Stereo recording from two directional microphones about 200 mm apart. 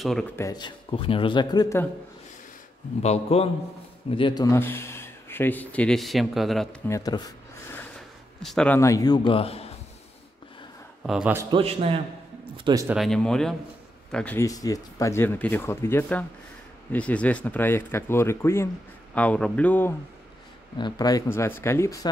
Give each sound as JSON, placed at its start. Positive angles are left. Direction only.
{"t": 0.0, "sound": "speech", "side_deg": 0}
{"t": 0.4, "sound": "speech", "side_deg": 20}
{"t": 3.0, "sound": "a man's voice", "side_deg": 30}
{"t": 6.9, "sound": "a sound", "side_deg": 20}
{"t": 8.4, "sound": "speech", "side_deg": 5}
{"t": 11.1, "sound": "speech", "side_deg": -5}
{"t": 11.5, "sound": "a man's voice", "side_deg": -30}
{"t": 12.6, "sound": "speech", "side_deg": -15}
{"t": 12.9, "sound": "speech", "side_deg": 0}
{"t": 20.7, "sound": "speech", "side_deg": 20}